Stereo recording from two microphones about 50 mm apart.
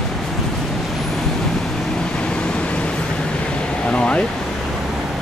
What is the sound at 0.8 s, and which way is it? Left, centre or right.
Vehicle, centre.